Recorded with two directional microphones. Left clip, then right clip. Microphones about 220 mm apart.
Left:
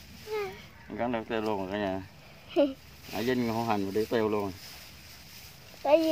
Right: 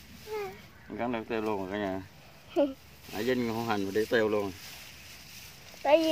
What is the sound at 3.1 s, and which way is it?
Speech, 20° left (ahead or behind).